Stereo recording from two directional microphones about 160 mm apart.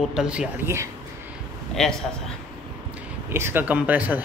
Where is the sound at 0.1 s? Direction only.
5° right (ahead or behind).